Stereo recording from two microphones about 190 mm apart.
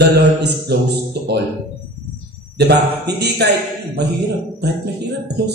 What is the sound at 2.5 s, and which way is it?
Speech, 60° right (ahead or behind).